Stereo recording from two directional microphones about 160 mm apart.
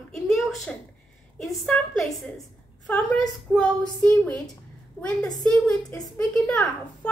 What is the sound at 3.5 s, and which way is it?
Speech, 10° left (ahead or behind).